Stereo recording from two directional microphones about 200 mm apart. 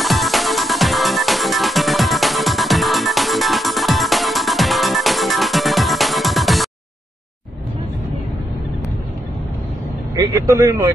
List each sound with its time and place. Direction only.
0.0 s music: centre (ahead or behind)
10.1 s speech: 15° right (ahead or behind)